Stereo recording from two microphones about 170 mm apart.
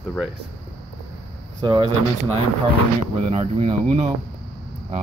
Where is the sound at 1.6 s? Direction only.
25° right (ahead or behind).